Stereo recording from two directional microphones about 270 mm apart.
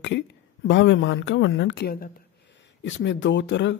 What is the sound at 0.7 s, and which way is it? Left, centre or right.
Speech, left.